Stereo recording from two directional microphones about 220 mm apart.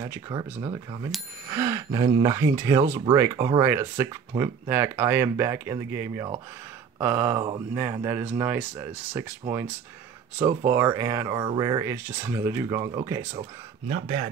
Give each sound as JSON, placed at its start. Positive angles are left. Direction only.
{"t": 0.0, "sound": "speech", "side_deg": -15}
{"t": 10.7, "sound": "speech", "side_deg": -15}
{"t": 13.3, "sound": "speech", "side_deg": -30}